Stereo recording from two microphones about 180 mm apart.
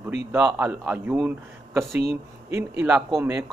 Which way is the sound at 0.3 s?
10° right (ahead or behind).